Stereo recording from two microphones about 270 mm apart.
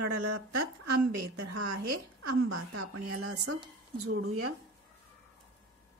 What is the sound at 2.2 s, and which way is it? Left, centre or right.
Speech, right.